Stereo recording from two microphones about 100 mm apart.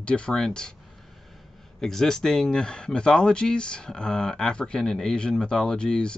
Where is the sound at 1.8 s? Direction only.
5° left (ahead or behind).